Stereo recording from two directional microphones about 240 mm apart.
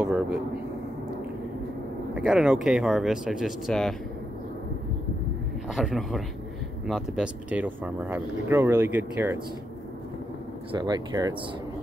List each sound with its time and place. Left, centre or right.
0.0 s a sound: centre
2.1 s speech: centre
5.8 s speech: centre
10.7 s speech: centre